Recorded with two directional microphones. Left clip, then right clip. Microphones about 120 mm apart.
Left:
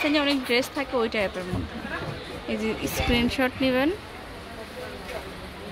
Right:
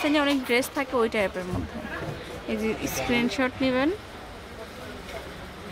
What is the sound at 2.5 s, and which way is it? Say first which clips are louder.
Speech: even; 5° right (ahead or behind).